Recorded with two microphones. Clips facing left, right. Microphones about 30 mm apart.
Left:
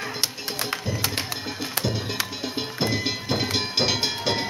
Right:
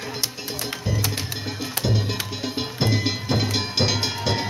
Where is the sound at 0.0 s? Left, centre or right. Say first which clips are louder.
Left 1 dB; left.